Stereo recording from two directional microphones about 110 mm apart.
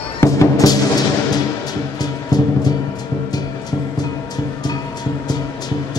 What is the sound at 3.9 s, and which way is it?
Music, 35° left (ahead or behind).